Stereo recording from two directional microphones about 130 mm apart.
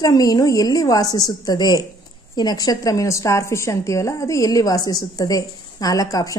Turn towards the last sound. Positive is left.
turn(degrees=25)  # may be behind; listen again after turning